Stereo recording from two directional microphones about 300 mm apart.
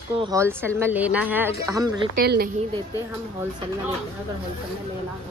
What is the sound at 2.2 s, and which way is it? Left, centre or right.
Speech, right.